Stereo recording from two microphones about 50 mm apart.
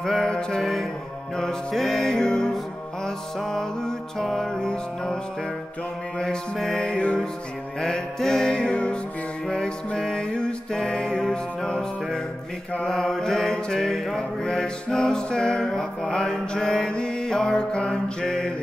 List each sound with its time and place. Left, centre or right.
0.0 s music: centre
1.3 s mantra: centre